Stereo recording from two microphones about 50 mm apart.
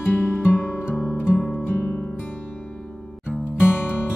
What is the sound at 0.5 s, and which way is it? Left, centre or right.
Music, left.